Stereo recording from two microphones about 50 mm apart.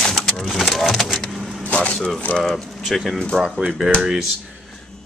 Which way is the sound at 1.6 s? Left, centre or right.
Left.